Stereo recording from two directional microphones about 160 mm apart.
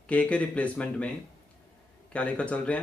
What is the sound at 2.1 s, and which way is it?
Speech, 10° left (ahead or behind).